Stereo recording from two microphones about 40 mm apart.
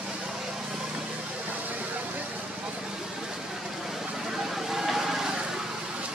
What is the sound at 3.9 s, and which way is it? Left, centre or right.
Vehicle, centre.